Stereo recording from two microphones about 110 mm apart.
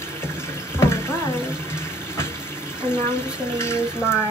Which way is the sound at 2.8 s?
20° left (ahead or behind).